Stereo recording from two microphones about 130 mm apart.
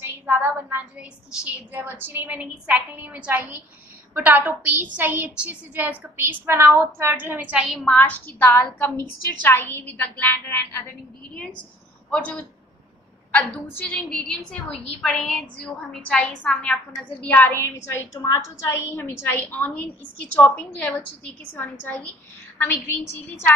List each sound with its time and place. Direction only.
0.0 s a woman's voice: 15° right (ahead or behind)
7.6 s a woman's voice: centre (ahead or behind)
7.9 s a woman's voice: 10° left (ahead or behind)
18.1 s a woman's voice: 25° left (ahead or behind)